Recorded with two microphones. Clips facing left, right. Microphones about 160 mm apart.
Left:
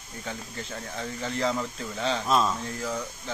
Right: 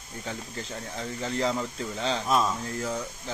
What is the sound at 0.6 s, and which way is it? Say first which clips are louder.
Speech: even; 30° right (ahead or behind).